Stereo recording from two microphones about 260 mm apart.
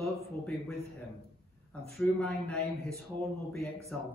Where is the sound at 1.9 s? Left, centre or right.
Centre.